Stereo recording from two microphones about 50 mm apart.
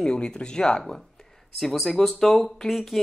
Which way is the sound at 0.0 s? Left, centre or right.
Centre.